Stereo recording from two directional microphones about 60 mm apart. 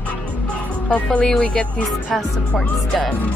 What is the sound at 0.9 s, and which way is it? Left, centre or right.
Speech, left.